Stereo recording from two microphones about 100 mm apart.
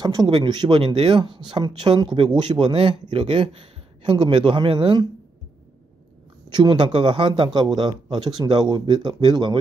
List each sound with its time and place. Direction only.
0.0 s speech: 45° right (ahead or behind)
6.5 s speech: 50° right (ahead or behind)